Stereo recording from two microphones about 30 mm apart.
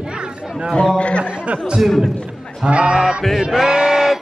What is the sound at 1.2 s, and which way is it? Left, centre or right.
Speech, right.